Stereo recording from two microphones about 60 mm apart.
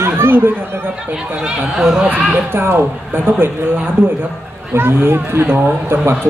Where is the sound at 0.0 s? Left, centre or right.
Right.